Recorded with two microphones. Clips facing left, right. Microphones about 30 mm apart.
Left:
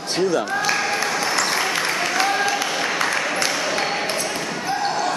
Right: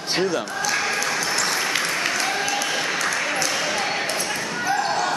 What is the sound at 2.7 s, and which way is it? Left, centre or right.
Applause, centre.